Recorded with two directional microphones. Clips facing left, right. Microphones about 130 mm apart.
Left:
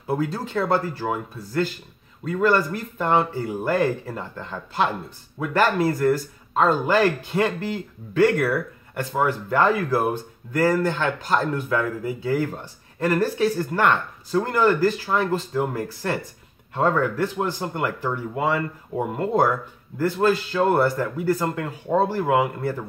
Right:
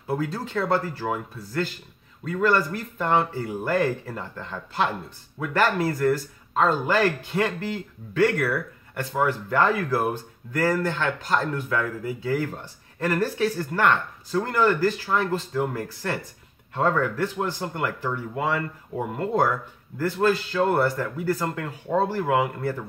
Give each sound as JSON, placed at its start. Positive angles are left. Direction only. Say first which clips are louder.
{"t": 0.1, "sound": "speech", "louder": "left 2 dB", "side_deg": 15}